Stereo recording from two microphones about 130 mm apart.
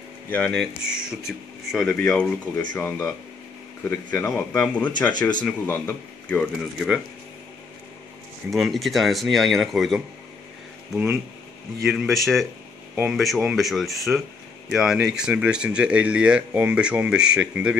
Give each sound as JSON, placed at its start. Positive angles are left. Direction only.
{"t": 0.3, "sound": "speech", "side_deg": 5}
{"t": 0.8, "sound": "speech", "side_deg": -5}
{"t": 2.0, "sound": "speech", "side_deg": 10}
{"t": 8.5, "sound": "speech", "side_deg": 0}